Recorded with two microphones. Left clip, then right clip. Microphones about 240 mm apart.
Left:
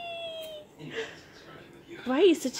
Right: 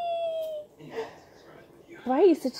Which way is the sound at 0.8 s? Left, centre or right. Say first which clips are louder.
Left 2 dB; centre.